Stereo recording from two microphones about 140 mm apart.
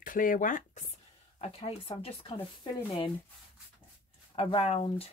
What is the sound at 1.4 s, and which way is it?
Speech, 45° left (ahead or behind).